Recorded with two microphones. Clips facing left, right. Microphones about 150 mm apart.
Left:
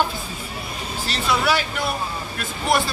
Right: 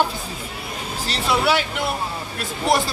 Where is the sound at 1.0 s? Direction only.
25° right (ahead or behind).